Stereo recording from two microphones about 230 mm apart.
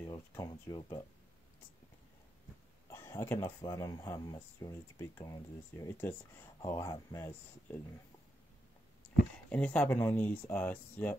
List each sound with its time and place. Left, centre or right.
0.3 s speech: centre
2.9 s speech: centre
9.5 s speech: centre